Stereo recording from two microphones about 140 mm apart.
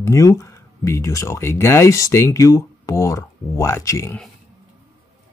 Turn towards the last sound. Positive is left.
turn(degrees=20)  # may be behind; listen again after turning